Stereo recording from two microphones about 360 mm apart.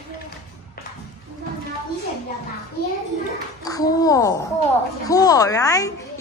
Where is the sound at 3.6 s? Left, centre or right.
Centre.